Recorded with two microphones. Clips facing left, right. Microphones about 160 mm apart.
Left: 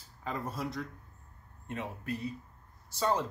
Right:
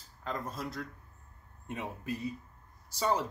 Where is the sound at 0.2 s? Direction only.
5° left (ahead or behind).